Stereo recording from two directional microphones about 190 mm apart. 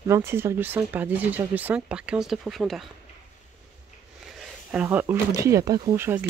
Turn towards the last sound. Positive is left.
turn(degrees=-10)  # may be behind; listen again after turning